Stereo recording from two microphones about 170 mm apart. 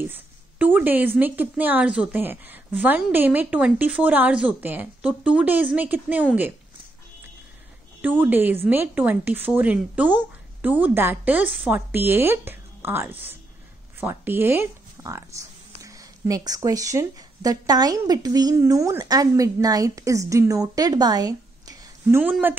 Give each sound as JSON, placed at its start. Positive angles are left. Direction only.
{"t": 0.1, "sound": "a woman's voice", "side_deg": -10}
{"t": 8.0, "sound": "a woman's voice", "side_deg": -10}